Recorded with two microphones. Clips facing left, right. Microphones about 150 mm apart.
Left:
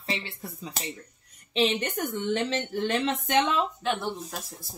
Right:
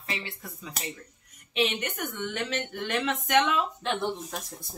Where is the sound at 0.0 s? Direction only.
30° left (ahead or behind).